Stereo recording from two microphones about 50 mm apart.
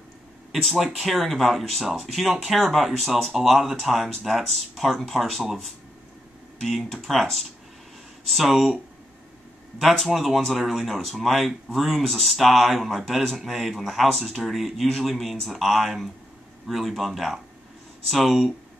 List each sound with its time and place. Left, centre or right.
0.5 s speech: centre
9.8 s speech: centre